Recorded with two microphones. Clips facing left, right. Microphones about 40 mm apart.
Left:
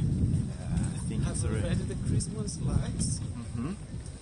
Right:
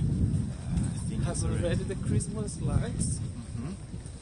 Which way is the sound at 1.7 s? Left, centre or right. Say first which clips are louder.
Right 1 dB; right.